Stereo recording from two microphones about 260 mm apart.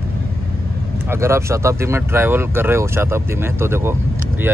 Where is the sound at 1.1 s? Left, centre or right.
Centre.